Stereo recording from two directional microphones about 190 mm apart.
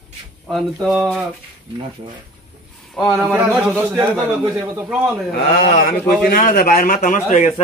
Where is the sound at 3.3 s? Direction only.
5° right (ahead or behind).